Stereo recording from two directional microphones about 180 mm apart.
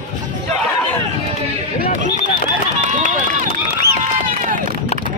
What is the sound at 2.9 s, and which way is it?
Run, 45° right (ahead or behind).